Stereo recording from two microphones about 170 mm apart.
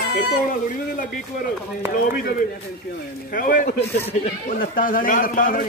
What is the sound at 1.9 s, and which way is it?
A man's voice, 60° left (ahead or behind).